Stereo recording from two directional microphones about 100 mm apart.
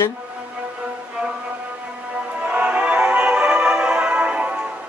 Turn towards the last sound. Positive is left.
turn(degrees=-10)  # may be behind; listen again after turning